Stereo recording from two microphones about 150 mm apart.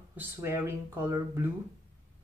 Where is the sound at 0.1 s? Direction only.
15° right (ahead or behind).